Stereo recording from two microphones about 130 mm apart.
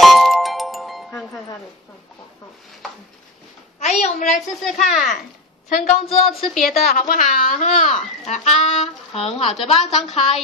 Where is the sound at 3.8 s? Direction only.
60° left (ahead or behind).